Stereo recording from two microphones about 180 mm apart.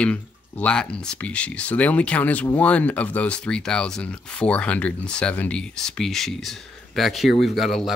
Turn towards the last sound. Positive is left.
turn(degrees=0)  # may be behind; listen again after turning